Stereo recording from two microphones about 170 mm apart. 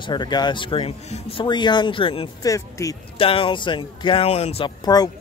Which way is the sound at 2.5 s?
20° left (ahead or behind).